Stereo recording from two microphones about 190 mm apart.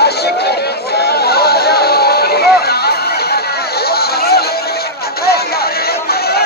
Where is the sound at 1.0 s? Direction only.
55° left (ahead or behind).